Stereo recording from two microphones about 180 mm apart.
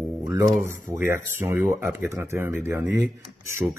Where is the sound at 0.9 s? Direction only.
15° right (ahead or behind).